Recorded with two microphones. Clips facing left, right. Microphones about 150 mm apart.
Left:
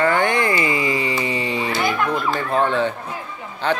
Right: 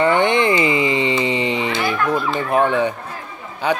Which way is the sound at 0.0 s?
20° right (ahead or behind).